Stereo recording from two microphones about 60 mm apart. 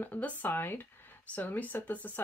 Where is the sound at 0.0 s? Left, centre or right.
Left.